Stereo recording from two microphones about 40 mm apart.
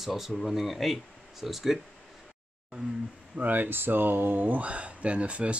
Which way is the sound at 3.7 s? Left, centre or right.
Right.